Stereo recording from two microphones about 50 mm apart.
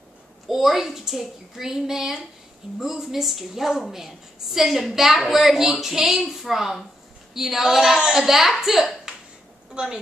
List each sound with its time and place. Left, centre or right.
0.5 s a woman's voice: centre
9.8 s a woman's voice: centre